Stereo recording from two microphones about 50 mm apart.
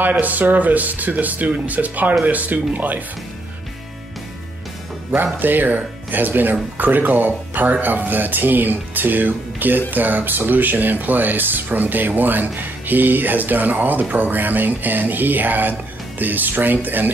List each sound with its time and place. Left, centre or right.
0.0 s speech: right
5.1 s speech: right